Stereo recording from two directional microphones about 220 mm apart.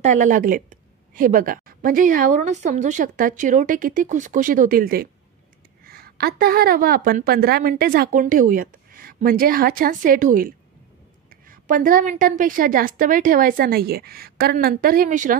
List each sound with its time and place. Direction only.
0.0 s a woman's voice: 35° right (ahead or behind)